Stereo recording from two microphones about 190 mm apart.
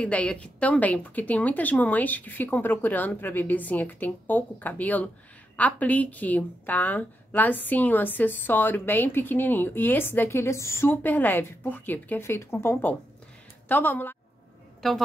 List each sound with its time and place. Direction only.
0.0 s a woman's voice: 5° left (ahead or behind)